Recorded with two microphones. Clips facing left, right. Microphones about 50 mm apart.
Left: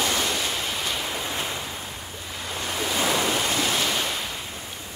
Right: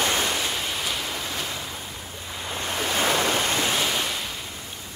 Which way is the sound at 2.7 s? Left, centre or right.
Right.